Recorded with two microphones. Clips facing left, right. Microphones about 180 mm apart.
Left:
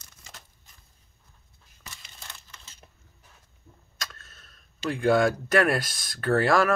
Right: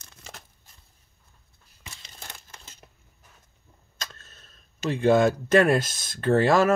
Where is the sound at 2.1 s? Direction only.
50° right (ahead or behind).